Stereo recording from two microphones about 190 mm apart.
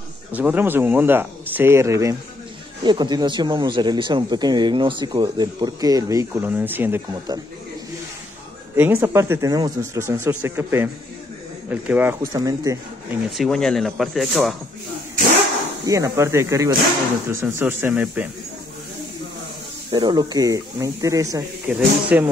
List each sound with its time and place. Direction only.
0.3 s speech: 10° right (ahead or behind)
8.7 s speech: 10° right (ahead or behind)
13.4 s speech: 5° left (ahead or behind)
15.9 s speech: 15° right (ahead or behind)
19.9 s speech: 25° right (ahead or behind)